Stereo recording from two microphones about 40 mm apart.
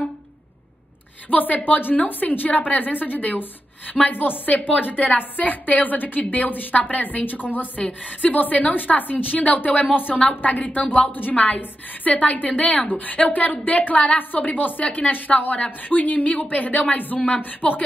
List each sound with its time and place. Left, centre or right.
1.3 s a woman's voice: left
12.8 s a woman's voice: left